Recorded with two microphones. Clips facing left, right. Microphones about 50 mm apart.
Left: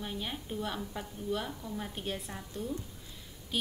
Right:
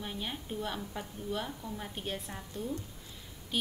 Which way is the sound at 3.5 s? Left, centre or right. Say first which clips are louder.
Even; centre.